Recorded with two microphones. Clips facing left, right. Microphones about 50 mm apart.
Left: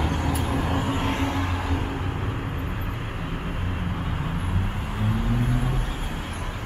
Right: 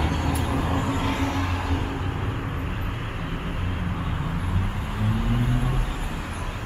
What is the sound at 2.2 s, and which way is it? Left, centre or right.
Vehicle, centre.